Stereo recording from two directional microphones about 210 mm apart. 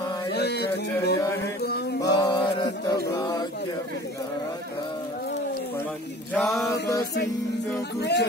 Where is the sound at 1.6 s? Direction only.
50° left (ahead or behind).